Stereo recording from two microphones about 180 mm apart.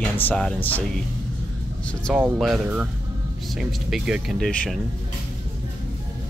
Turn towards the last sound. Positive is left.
turn(degrees=5)  # may be behind; listen again after turning